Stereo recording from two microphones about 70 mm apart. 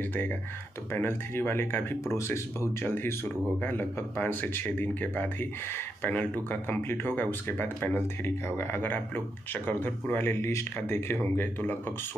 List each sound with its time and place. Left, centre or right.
0.9 s speech: left
2.8 s speech: left
10.4 s speech: left